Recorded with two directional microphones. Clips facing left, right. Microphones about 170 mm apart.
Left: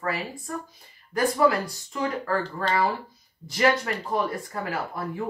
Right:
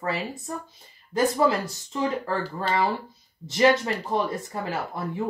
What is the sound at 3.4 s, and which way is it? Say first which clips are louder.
Speech: right 3 dB; 25° right (ahead or behind).